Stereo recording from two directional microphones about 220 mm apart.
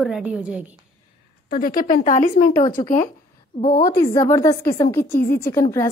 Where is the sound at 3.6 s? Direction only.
20° left (ahead or behind).